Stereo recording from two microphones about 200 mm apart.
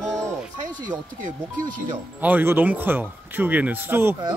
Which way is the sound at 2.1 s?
10° right (ahead or behind).